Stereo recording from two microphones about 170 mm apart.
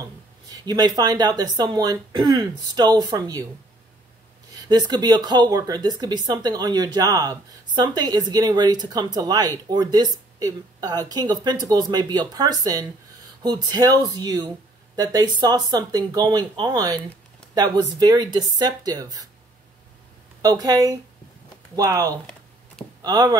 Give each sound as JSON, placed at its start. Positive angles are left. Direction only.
{"t": 0.5, "sound": "speech", "side_deg": -25}
{"t": 4.6, "sound": "speech", "side_deg": -25}
{"t": 20.4, "sound": "speech", "side_deg": -20}